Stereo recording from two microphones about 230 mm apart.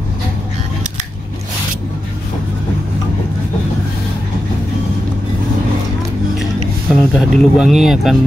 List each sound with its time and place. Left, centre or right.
6.9 s speech: centre